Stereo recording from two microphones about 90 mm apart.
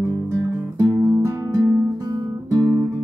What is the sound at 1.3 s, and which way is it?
Music, 40° right (ahead or behind).